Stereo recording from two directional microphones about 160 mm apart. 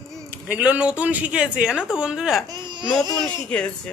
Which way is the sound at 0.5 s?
10° right (ahead or behind).